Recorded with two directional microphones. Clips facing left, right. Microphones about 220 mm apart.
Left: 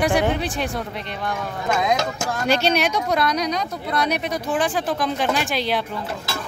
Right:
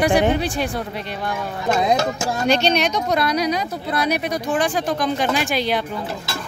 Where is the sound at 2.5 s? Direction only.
5° left (ahead or behind).